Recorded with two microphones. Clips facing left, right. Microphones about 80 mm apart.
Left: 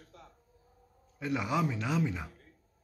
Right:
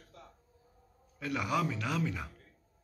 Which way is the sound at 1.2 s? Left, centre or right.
Left.